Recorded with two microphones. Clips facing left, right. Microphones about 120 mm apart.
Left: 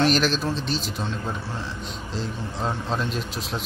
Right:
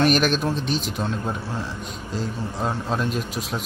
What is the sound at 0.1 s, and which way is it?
Speech, 55° right (ahead or behind).